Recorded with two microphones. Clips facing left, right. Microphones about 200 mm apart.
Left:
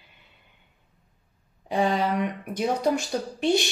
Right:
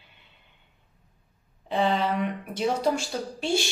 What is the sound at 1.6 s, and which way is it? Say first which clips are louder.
A woman's voice: left 1 dB; 15° left (ahead or behind).